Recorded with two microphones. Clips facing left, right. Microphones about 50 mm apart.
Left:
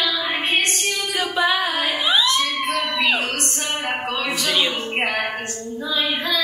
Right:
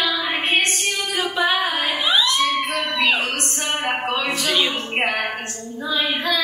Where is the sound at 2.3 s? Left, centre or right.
Centre.